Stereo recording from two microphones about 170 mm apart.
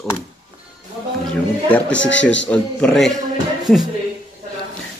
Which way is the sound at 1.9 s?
90° left.